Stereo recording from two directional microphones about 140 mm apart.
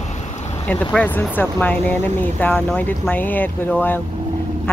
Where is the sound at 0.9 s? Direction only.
10° left (ahead or behind).